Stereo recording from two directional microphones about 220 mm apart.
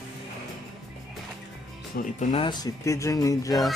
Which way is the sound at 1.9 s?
35° left (ahead or behind).